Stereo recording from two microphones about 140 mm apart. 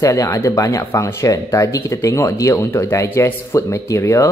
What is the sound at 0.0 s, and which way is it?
Speech, 25° left (ahead or behind).